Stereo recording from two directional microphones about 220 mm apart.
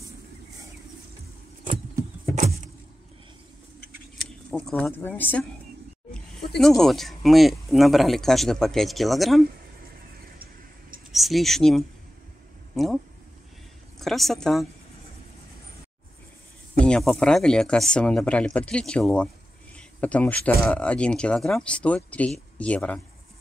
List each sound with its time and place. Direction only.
4.5 s speech: 5° left (ahead or behind)
6.6 s speech: centre (ahead or behind)
10.2 s a sound: 40° right (ahead or behind)
11.1 s speech: centre (ahead or behind)
16.8 s speech: centre (ahead or behind)
19.7 s a sound: 5° left (ahead or behind)
20.6 s speech: 5° left (ahead or behind)